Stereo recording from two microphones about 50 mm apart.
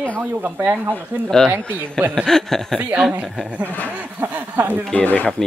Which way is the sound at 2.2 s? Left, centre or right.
Centre.